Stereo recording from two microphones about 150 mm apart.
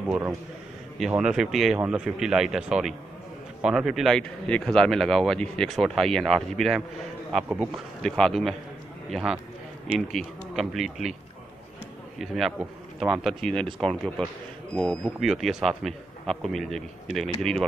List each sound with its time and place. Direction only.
0.9 s speech: 5° right (ahead or behind)
7.3 s speech: 10° right (ahead or behind)
8.0 s speech: 5° left (ahead or behind)
12.2 s speech: centre (ahead or behind)